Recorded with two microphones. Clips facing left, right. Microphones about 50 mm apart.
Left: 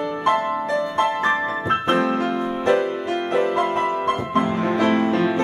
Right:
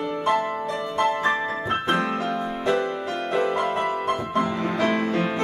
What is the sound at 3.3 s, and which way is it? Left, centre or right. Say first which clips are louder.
Music: left 2 dB; left.